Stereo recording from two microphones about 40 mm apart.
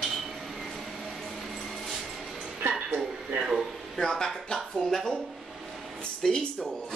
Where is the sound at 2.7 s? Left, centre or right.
Right.